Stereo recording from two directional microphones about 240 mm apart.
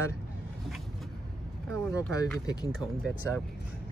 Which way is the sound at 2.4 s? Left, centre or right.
Centre.